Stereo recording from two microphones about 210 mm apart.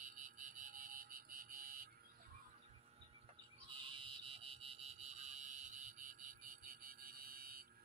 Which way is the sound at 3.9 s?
25° right (ahead or behind).